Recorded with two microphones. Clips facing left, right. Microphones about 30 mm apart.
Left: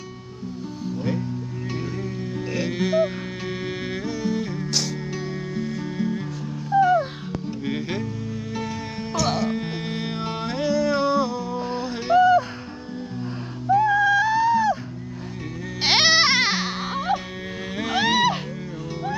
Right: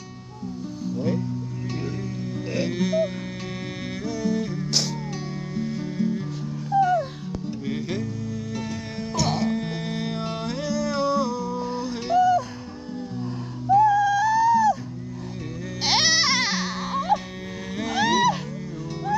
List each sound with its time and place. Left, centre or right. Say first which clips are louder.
0.8 s music: right 1 dB; left
2.7 s speech: left 3 dB; left
4.0 s music: right 2 dB; centre
9.5 s music: even; left
15.8 s music: left 3 dB; left